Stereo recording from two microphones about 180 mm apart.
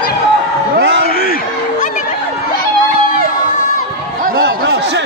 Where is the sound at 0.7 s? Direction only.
70° right (ahead or behind).